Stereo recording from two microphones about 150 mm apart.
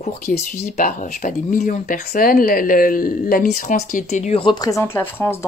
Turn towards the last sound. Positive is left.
turn(degrees=15)  # may be behind; listen again after turning